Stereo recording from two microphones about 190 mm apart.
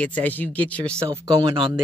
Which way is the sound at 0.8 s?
15° right (ahead or behind).